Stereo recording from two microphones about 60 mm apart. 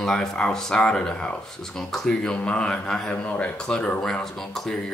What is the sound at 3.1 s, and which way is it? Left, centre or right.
Speech, left.